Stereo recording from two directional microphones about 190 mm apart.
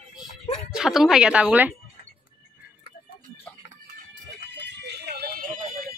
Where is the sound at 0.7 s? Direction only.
Centre (ahead or behind).